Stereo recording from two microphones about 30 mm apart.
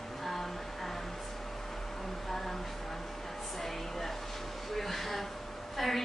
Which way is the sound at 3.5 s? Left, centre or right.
Centre.